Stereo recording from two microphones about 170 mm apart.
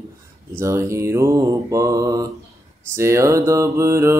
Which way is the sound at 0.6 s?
15° right (ahead or behind).